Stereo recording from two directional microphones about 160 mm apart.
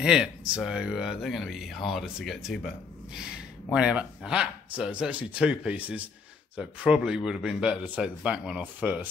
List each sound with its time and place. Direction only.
0.0 s speech: 5° right (ahead or behind)